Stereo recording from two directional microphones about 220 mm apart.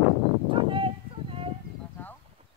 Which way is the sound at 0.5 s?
25° right (ahead or behind).